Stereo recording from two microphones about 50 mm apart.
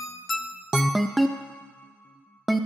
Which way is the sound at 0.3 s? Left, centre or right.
Centre.